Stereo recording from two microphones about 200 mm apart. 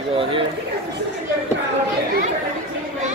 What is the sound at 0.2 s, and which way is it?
Speech, 25° right (ahead or behind).